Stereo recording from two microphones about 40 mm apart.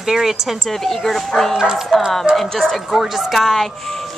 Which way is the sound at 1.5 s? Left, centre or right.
Centre.